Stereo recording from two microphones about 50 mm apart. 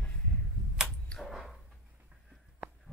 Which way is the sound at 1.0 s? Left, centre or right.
Centre.